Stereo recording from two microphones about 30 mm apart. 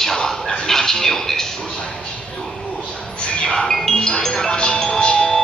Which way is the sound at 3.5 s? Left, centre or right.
Centre.